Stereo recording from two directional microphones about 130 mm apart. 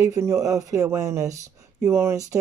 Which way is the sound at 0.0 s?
25° right (ahead or behind).